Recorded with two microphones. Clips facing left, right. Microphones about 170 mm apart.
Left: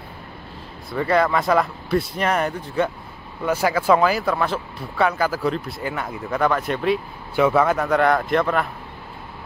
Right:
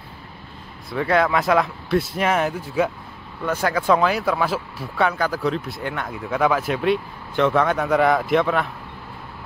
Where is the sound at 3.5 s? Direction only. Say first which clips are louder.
Left 1 dB; 10° left (ahead or behind).